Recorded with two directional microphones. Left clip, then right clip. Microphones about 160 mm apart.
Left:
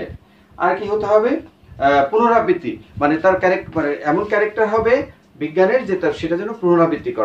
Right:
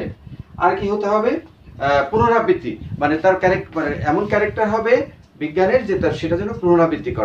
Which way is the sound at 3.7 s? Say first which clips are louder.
Left 1 dB; 10° left (ahead or behind).